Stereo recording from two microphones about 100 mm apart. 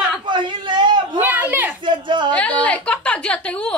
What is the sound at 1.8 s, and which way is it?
Speech, 55° right (ahead or behind).